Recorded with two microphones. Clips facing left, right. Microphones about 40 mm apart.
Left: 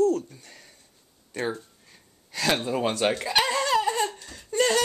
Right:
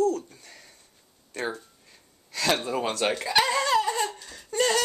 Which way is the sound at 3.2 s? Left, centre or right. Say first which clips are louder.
Right 1 dB; centre.